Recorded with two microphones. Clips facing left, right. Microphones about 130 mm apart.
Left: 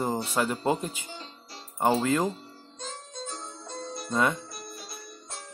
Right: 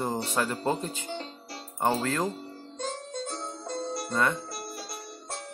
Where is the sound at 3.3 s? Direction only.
70° right (ahead or behind).